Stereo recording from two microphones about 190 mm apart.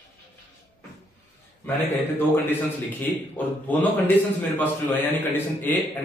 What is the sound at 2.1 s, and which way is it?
A man's voice, 10° left (ahead or behind).